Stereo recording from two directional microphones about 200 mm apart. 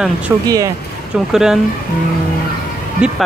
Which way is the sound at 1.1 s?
5° right (ahead or behind).